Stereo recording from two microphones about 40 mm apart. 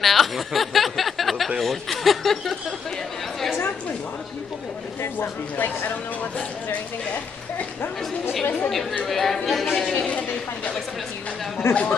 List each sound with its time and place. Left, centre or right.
0.0 s chuckle: centre
5.0 s speech: left
9.0 s a woman's voice: centre
10.0 s speech: left
11.6 s speech: left